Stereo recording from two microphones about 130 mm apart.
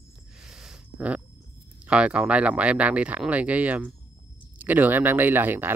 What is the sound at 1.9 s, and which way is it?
Speech, 10° right (ahead or behind).